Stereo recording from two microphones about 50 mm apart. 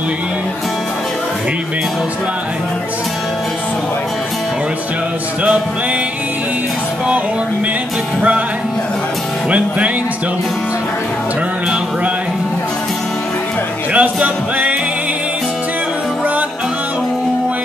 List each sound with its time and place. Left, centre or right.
13.9 s music: right